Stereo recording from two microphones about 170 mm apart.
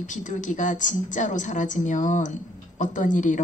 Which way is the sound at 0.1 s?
50° left (ahead or behind).